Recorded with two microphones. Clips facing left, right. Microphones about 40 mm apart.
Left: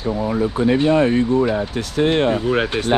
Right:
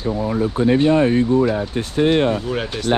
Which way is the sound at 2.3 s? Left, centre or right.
Left.